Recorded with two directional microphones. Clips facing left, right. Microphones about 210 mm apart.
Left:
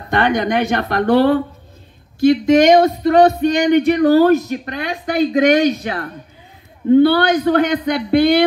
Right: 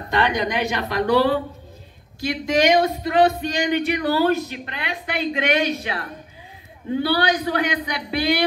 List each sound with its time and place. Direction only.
0.1 s speech: 50° left (ahead or behind)